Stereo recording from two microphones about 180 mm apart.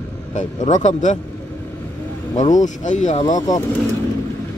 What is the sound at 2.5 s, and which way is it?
Speech, 45° left (ahead or behind).